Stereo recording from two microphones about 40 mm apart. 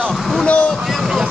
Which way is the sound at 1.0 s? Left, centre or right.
Centre.